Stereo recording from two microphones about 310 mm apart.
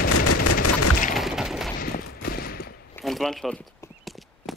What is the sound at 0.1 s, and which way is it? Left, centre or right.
Gunshot, left.